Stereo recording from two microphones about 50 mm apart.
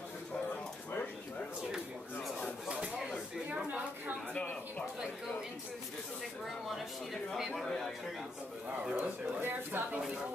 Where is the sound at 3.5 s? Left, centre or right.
Right.